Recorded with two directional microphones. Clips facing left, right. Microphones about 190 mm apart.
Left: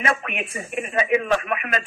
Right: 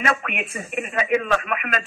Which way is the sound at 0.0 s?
25° left (ahead or behind).